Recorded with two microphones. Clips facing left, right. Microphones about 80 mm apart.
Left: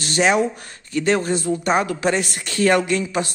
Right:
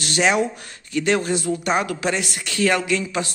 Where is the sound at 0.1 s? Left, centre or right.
Centre.